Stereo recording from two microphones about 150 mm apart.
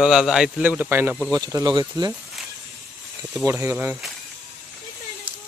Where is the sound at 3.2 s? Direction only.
15° right (ahead or behind).